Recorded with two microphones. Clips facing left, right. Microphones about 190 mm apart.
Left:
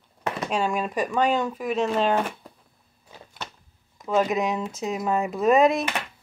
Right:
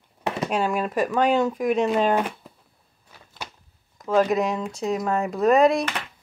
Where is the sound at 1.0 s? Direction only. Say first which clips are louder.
Right 3 dB; 5° right (ahead or behind).